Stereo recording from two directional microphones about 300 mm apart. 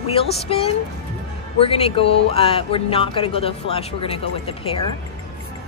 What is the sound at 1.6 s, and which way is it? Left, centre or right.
Speech, centre.